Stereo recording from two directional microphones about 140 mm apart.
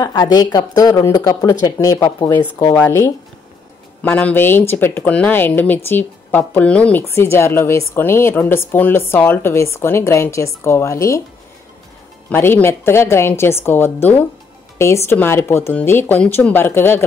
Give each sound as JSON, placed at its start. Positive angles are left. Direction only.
{"t": 0.0, "sound": "a woman's voice", "side_deg": 30}
{"t": 2.3, "sound": "a woman's voice", "side_deg": 15}
{"t": 12.3, "sound": "a woman's voice", "side_deg": 15}